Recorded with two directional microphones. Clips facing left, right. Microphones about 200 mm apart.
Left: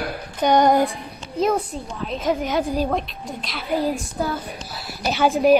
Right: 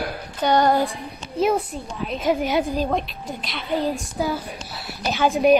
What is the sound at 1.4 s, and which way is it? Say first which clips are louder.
A woman's voice: even; centre (ahead or behind).